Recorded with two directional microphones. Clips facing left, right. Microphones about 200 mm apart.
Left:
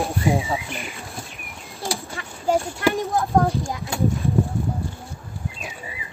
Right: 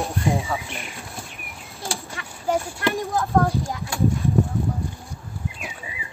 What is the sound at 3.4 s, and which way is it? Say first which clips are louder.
Speech: left 1 dB; 15° left (ahead or behind).